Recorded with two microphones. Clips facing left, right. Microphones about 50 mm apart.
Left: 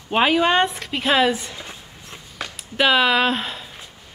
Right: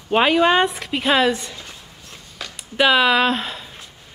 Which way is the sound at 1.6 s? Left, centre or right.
Centre.